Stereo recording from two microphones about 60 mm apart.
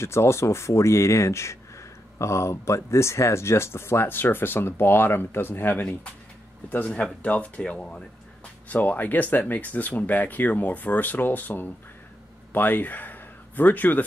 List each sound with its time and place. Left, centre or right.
0.0 s speech: left
7.2 s speech: left